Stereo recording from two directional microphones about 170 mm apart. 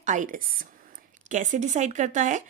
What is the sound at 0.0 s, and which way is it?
A woman's voice, 45° right (ahead or behind).